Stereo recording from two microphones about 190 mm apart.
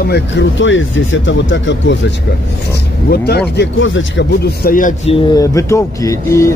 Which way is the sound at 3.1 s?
60° left (ahead or behind).